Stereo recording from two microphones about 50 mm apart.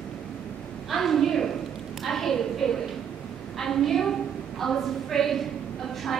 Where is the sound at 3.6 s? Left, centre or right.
Centre.